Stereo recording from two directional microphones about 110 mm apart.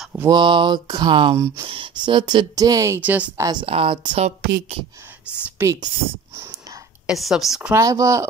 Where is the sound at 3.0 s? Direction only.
15° right (ahead or behind).